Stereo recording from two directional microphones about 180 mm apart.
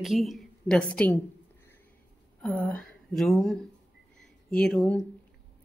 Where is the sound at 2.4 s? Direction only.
5° left (ahead or behind).